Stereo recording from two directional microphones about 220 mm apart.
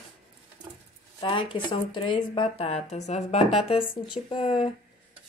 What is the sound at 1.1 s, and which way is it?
Speech, 20° left (ahead or behind).